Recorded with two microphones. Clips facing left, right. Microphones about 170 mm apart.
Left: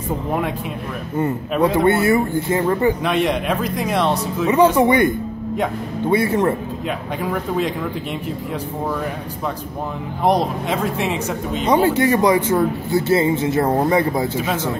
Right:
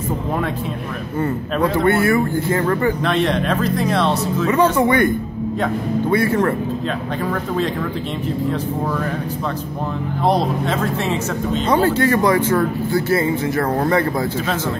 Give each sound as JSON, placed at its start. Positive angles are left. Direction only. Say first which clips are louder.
{"t": 1.2, "sound": "speech", "louder": "left 1 dB", "side_deg": 15}
{"t": 10.2, "sound": "speech", "louder": "even", "side_deg": 15}